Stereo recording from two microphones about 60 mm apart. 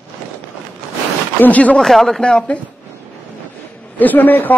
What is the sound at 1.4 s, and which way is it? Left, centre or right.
Speech, left.